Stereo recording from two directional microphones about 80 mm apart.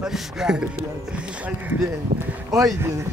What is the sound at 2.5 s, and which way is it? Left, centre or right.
Speech, right.